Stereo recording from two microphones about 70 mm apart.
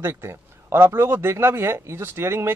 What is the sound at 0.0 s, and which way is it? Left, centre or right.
Speech, right.